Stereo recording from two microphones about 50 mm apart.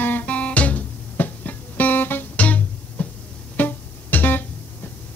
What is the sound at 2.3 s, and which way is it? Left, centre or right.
Music, left.